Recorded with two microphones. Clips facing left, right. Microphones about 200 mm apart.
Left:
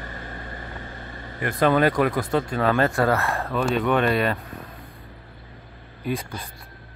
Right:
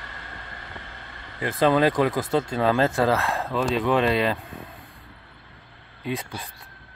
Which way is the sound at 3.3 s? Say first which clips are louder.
Even; 20° right (ahead or behind).